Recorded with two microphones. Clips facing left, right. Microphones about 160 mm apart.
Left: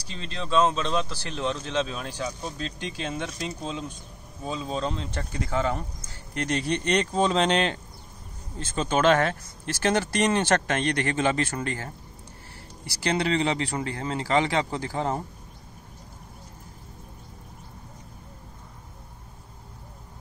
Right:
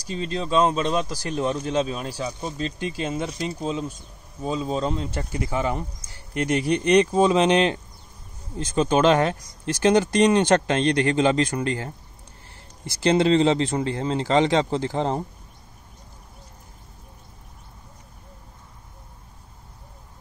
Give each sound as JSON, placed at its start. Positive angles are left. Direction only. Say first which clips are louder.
{"t": 0.1, "sound": "speech", "louder": "right 8 dB", "side_deg": -45}
{"t": 1.4, "sound": "speech", "louder": "right 4 dB", "side_deg": -10}
{"t": 13.0, "sound": "speech", "louder": "right 7 dB", "side_deg": -25}